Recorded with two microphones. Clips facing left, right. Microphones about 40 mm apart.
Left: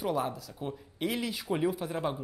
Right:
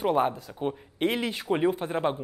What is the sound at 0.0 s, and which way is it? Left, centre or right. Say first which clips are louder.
Speech: right 7 dB; right.